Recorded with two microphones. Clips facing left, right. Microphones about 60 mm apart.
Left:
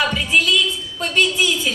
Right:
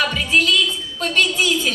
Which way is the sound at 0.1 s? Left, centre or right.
Centre.